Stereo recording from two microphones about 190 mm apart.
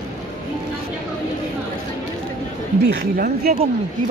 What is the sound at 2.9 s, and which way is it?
Speech, 55° right (ahead or behind).